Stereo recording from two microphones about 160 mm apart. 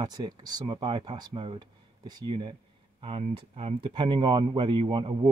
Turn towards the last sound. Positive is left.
turn(degrees=-30)  # may be behind; listen again after turning